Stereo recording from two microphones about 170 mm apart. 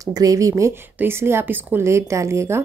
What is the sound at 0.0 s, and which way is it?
Speech, 20° right (ahead or behind).